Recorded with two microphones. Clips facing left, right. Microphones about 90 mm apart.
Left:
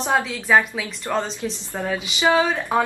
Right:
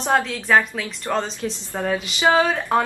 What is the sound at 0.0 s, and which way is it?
A woman's voice, 5° left (ahead or behind).